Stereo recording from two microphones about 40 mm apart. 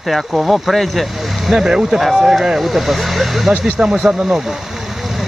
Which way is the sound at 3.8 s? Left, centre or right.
Right.